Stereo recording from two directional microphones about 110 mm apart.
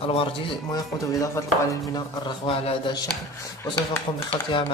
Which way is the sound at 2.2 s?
50° left (ahead or behind).